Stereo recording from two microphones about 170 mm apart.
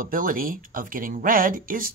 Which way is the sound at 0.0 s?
55° right (ahead or behind).